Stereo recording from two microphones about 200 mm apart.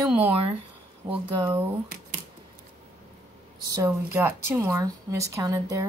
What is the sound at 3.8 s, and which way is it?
Speech, 10° right (ahead or behind).